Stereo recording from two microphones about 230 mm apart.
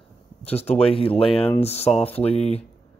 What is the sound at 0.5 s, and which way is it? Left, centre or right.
Speech, left.